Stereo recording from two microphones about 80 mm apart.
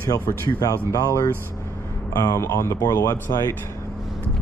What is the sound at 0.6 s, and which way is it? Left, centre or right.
Speech, left.